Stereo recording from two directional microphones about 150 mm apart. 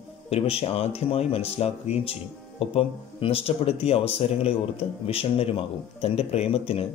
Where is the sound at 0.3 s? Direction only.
40° left (ahead or behind).